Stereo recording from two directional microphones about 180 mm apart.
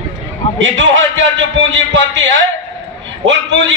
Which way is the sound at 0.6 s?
90° right.